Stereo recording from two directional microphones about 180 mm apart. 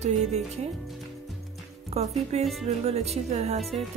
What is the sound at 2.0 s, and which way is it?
Speech, 35° right (ahead or behind).